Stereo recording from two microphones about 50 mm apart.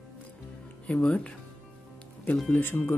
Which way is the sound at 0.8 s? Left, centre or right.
Left.